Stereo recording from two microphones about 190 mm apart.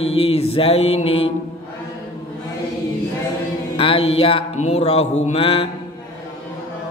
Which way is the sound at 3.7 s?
30° left (ahead or behind).